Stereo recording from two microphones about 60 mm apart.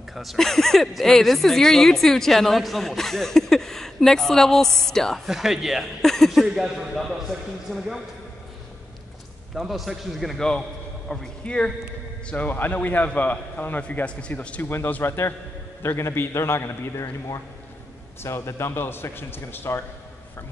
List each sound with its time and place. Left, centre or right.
0.1 s a woman's voice: centre
6.0 s a sound: centre
6.4 s a woman's voice: centre
9.6 s a woman's voice: centre
11.1 s speech: centre
12.3 s a man's voice: left
14.6 s a man's voice: left